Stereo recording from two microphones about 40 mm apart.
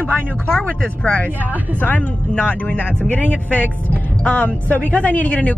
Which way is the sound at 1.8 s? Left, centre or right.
Left.